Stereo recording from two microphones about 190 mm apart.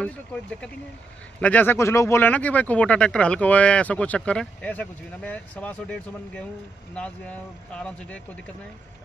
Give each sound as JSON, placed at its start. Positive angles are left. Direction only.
{"t": 0.0, "sound": "speech", "side_deg": 5}